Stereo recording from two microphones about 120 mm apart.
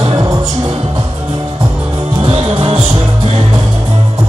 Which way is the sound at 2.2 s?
55° right (ahead or behind).